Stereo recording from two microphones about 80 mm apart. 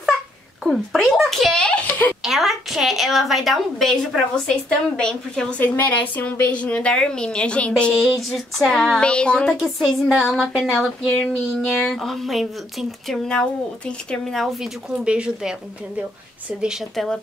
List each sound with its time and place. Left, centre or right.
0.7 s speech: centre
2.2 s a woman's voice: centre
5.6 s a woman's voice: left
8.1 s speech: centre
9.0 s a woman's voice: centre
9.6 s speech: centre
15.0 s speech: centre
16.9 s speech: centre